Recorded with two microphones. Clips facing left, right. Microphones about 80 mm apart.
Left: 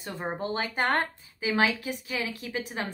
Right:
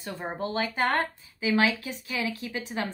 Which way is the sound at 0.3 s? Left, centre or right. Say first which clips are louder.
Right 1 dB; left.